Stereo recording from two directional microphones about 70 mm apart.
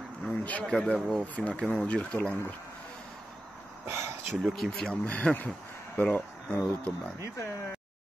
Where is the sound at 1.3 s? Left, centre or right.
Centre.